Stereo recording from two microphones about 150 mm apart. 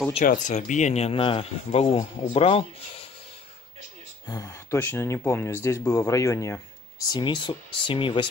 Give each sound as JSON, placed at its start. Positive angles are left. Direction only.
{"t": 0.2, "sound": "speech", "side_deg": 55}
{"t": 4.3, "sound": "speech", "side_deg": 20}